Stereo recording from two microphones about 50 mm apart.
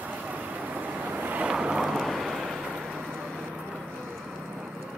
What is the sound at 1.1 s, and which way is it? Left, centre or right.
Vehicle, right.